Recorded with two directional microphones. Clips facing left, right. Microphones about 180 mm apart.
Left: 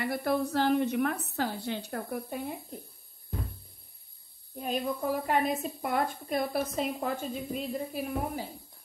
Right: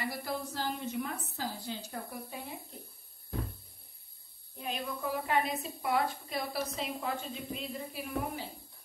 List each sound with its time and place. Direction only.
0.0 s a woman's voice: 60° left (ahead or behind)
4.6 s a woman's voice: 45° left (ahead or behind)